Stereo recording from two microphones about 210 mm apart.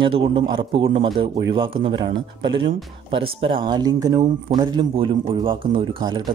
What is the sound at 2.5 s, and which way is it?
Speech, 25° right (ahead or behind).